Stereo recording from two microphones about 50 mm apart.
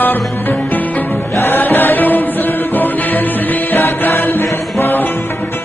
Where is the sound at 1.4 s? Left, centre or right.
Left.